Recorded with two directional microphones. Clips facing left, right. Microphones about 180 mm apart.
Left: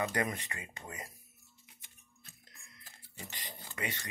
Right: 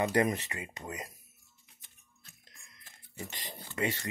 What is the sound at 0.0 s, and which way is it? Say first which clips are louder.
Speech: right 6 dB; 25° right (ahead or behind).